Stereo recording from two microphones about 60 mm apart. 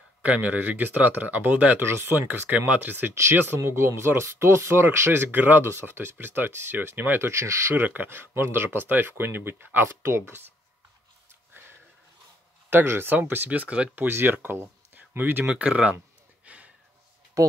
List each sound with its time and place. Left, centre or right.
0.2 s speech: right
1.8 s speech: right
3.2 s speech: right
7.2 s speech: right
7.8 s speech: right
12.6 s speech: right
14.0 s speech: right
15.6 s speech: right
16.4 s a sound: right
17.4 s speech: right